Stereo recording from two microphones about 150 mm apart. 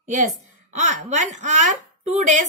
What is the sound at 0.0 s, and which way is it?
A woman's voice, 55° right (ahead or behind).